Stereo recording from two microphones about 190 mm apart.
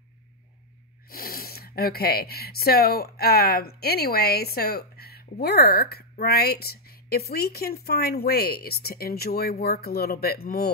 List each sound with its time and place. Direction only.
1.1 s speech: 50° left (ahead or behind)